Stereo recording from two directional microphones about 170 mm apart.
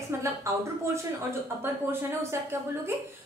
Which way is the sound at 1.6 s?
15° right (ahead or behind).